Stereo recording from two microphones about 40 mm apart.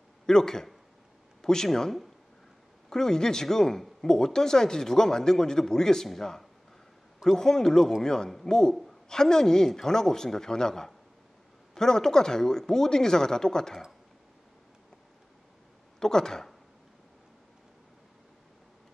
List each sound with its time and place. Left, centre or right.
0.3 s speech: centre
16.0 s speech: centre